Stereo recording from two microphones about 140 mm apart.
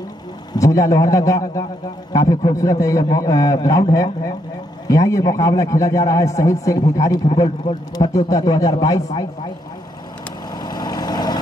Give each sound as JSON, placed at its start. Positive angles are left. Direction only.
{"t": 0.5, "sound": "a man's voice", "side_deg": 25}
{"t": 10.5, "sound": "vehicle", "side_deg": 30}